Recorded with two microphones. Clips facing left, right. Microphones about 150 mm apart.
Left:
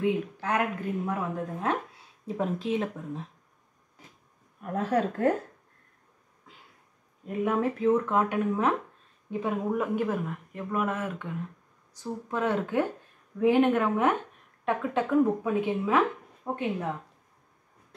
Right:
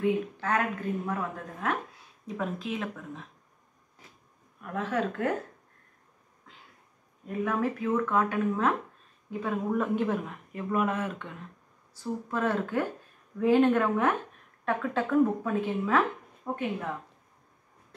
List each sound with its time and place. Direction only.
0.0 s speech: 15° left (ahead or behind)
2.2 s speech: 25° left (ahead or behind)
4.6 s speech: 40° left (ahead or behind)
7.2 s speech: 20° left (ahead or behind); by 11.3 s 5° left (ahead or behind)
11.9 s speech: 15° left (ahead or behind)